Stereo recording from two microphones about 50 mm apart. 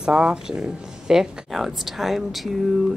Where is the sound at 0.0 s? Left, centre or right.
Centre.